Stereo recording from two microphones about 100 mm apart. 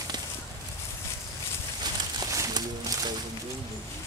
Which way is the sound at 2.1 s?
35° right (ahead or behind).